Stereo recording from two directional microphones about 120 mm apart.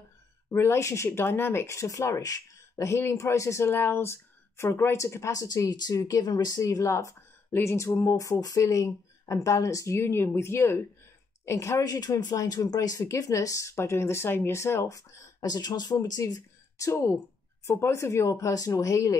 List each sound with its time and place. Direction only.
0.5 s speech: 25° left (ahead or behind)